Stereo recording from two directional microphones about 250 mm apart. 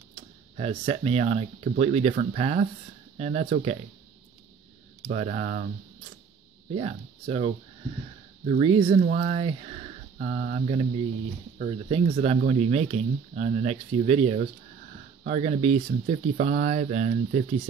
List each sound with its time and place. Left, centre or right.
0.1 s speech: right
5.1 s speech: right
6.7 s speech: right